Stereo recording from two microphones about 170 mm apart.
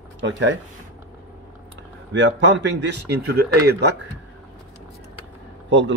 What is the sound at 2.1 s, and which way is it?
Speech, 90° right.